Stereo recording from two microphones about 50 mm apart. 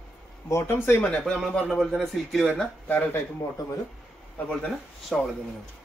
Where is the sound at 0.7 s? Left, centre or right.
Left.